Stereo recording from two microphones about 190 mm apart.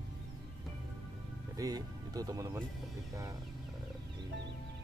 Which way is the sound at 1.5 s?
20° right (ahead or behind).